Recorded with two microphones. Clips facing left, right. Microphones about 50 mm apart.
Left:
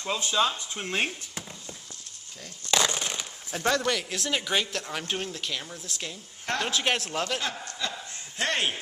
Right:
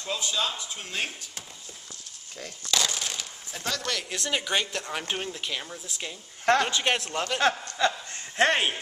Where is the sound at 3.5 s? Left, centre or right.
Left.